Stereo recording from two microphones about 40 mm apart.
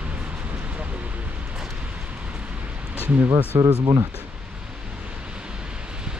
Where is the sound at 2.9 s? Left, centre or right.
Left.